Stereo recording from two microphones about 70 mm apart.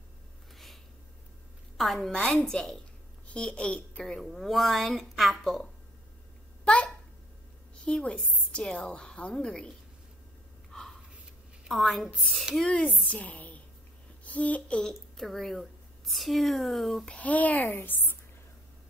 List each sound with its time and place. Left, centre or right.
1.8 s speech: centre
3.3 s speech: centre
4.0 s speech: centre
6.6 s a sound: centre
7.8 s a woman's voice: centre
10.7 s gasp: centre
11.6 s a woman's voice: centre
12.6 s a woman's voice: centre
14.8 s a woman's voice: centre
17.1 s a woman's voice: left